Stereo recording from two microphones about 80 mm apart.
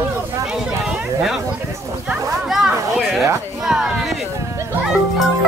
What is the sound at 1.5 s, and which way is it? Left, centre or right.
Speech, centre.